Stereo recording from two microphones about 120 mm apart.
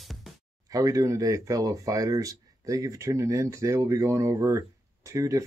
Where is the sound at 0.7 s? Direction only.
30° right (ahead or behind).